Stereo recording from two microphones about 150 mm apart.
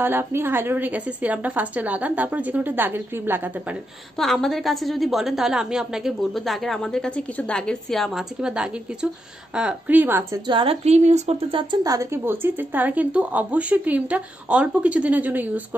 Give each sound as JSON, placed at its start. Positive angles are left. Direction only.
{"t": 0.0, "sound": "speech", "side_deg": -15}
{"t": 4.2, "sound": "a woman's voice", "side_deg": 0}
{"t": 10.4, "sound": "a woman's voice", "side_deg": -35}
{"t": 11.8, "sound": "speech", "side_deg": -20}